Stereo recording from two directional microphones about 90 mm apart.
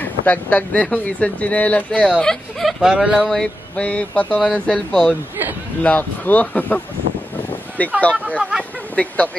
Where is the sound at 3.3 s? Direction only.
10° left (ahead or behind).